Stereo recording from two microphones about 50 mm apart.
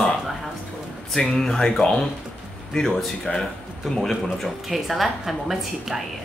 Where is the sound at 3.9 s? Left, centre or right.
Centre.